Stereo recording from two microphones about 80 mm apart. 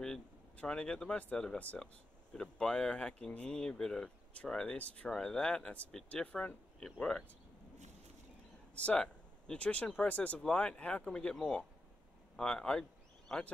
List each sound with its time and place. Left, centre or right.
0.6 s speech: centre
8.7 s speech: centre